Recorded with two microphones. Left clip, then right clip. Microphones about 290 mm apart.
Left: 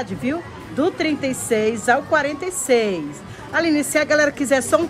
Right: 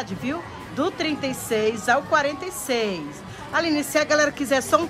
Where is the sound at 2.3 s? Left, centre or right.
Centre.